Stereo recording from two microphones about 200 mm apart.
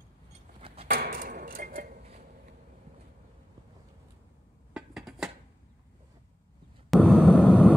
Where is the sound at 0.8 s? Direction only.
50° right (ahead or behind).